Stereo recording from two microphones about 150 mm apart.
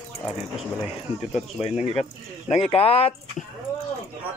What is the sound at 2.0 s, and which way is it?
Speech, 40° left (ahead or behind).